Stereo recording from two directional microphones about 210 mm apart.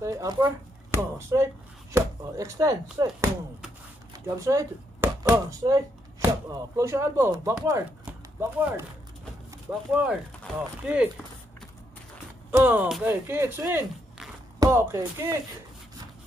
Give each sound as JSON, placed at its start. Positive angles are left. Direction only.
{"t": 0.0, "sound": "speech", "side_deg": -15}
{"t": 4.5, "sound": "speech", "side_deg": -15}
{"t": 12.4, "sound": "speech", "side_deg": -10}